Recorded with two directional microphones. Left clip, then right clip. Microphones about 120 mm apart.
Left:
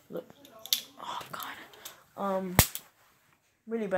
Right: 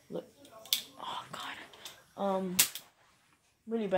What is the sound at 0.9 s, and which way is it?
Whispering, 10° right (ahead or behind).